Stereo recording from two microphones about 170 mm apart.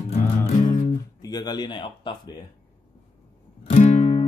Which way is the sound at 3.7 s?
40° left (ahead or behind).